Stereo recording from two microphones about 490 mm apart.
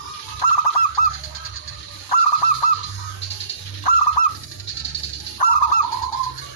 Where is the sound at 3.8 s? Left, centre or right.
Left.